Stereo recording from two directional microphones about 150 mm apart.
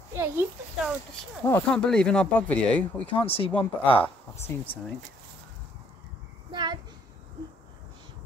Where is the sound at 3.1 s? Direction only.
40° left (ahead or behind).